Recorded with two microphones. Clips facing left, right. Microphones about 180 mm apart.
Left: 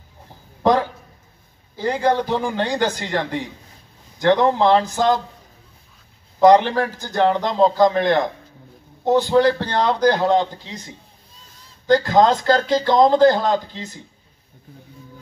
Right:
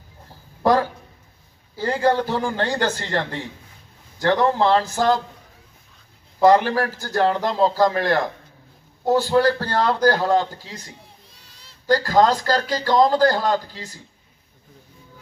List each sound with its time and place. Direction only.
1.8 s a man's voice: 15° left (ahead or behind)
6.4 s speech: 20° left (ahead or behind)